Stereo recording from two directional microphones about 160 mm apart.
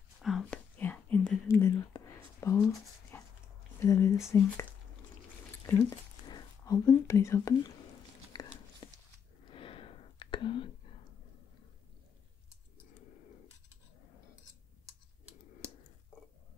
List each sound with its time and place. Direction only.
0.2 s whispering: 5° left (ahead or behind)
1.5 s whispering: 20° left (ahead or behind)
3.1 s dog: 15° left (ahead or behind)
3.8 s speech: 20° left (ahead or behind)
5.9 s speech: 25° left (ahead or behind)
8.3 s a sound: 30° left (ahead or behind)
9.5 s whispering: 35° left (ahead or behind)